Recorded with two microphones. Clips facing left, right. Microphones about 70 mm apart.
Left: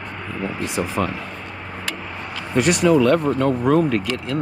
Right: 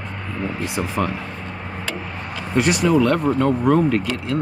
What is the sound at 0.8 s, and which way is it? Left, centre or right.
Speech, centre.